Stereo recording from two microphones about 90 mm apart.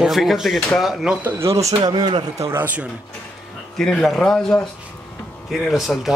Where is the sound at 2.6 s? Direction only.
15° right (ahead or behind).